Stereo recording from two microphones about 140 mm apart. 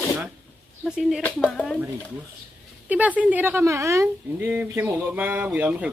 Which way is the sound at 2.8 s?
10° right (ahead or behind).